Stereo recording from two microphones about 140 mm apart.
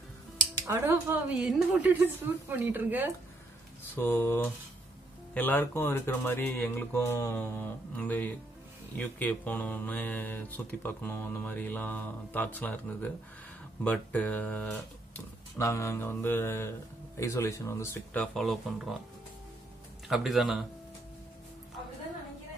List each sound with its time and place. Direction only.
0.7 s a woman's voice: 15° right (ahead or behind)
3.9 s speech: 15° left (ahead or behind)
18.1 s speech: 5° left (ahead or behind)
20.1 s speech: centre (ahead or behind)